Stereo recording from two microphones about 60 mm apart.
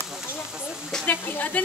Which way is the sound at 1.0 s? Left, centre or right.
Left.